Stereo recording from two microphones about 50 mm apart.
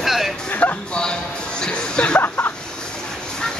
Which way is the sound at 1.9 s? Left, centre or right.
Left.